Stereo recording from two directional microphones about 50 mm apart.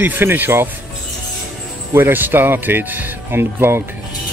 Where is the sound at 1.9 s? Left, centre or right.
Right.